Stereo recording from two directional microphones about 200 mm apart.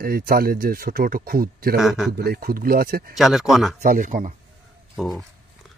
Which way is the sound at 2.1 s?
50° right (ahead or behind).